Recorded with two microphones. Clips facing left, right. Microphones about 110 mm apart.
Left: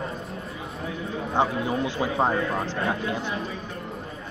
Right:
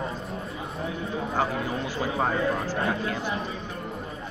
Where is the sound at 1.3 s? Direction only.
25° left (ahead or behind).